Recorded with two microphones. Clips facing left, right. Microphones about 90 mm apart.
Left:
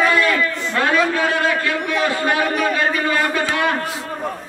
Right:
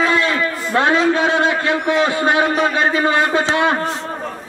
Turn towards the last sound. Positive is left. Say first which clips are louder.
# right 3 dB
turn(degrees=-25)  # may be behind; listen again after turning